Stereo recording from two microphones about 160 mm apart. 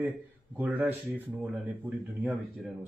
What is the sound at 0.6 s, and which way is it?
Speech, 10° right (ahead or behind).